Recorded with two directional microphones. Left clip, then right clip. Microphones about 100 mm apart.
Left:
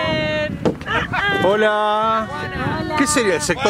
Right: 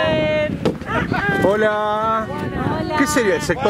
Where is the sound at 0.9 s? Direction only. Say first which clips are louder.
Left 1 dB; 40° left (ahead or behind).